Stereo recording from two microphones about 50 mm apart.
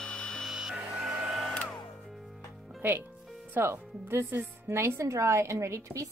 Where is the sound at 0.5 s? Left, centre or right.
Centre.